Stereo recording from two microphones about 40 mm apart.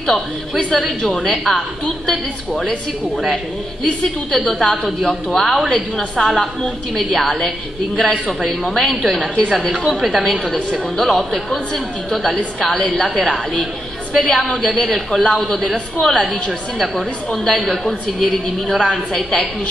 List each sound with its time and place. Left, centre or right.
0.6 s a woman's voice: centre
3.8 s a woman's voice: centre
9.9 s a woman's voice: centre
14.1 s a woman's voice: centre
16.7 s a woman's voice: centre